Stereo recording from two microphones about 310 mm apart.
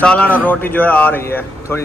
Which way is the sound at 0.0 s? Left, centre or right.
Centre.